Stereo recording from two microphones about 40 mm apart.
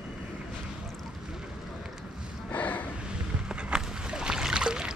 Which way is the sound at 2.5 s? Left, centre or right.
Left.